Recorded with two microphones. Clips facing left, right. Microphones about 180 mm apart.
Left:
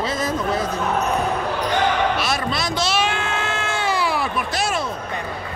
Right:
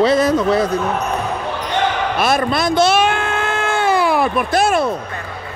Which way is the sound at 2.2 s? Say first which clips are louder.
Right 7 dB; 55° right (ahead or behind).